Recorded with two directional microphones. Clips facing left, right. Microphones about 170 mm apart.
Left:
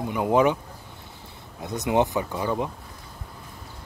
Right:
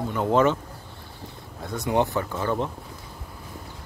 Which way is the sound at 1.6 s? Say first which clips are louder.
Left 1 dB; 20° left (ahead or behind).